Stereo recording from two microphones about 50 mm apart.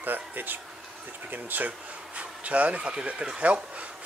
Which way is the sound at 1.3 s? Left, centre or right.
Right.